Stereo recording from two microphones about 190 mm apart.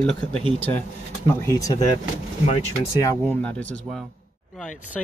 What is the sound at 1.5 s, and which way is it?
Speech, 20° left (ahead or behind).